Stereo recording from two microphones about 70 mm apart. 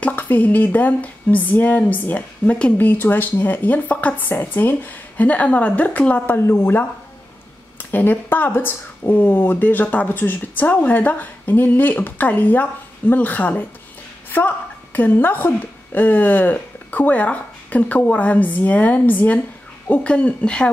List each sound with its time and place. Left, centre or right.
0.0 s speech: left
6.3 s speech: left
7.9 s a woman's voice: left